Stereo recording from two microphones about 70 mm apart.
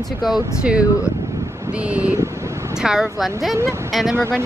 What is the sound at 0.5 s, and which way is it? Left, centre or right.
Speech, centre.